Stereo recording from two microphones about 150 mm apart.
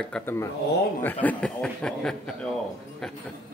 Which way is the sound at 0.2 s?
15° left (ahead or behind).